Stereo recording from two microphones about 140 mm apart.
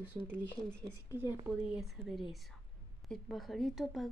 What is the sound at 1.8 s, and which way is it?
Speech, centre (ahead or behind).